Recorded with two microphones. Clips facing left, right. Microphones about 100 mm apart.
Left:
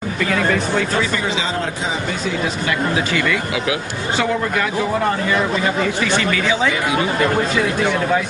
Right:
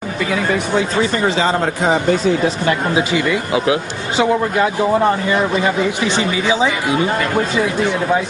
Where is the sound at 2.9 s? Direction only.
20° right (ahead or behind).